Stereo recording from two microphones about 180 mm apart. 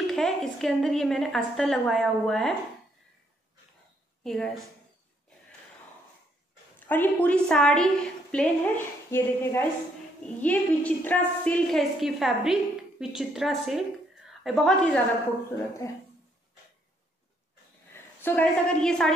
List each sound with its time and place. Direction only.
0.0 s a woman's voice: centre (ahead or behind)
4.2 s a woman's voice: centre (ahead or behind)
6.9 s a woman's voice: 10° left (ahead or behind)
15.8 s a woman's voice: 15° left (ahead or behind)
17.9 s a woman's voice: 10° left (ahead or behind)